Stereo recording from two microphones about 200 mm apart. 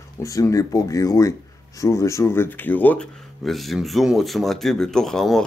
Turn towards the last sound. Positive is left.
turn(degrees=0)  # may be behind; listen again after turning